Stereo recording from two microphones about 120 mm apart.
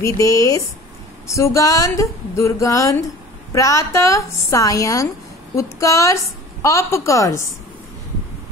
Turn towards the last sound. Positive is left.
turn(degrees=25)  # may be behind; listen again after turning